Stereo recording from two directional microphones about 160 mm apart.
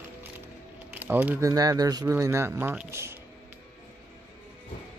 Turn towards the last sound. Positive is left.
turn(degrees=-15)  # may be behind; listen again after turning